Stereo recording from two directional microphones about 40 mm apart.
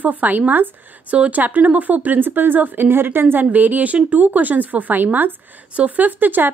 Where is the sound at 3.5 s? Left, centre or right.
Right.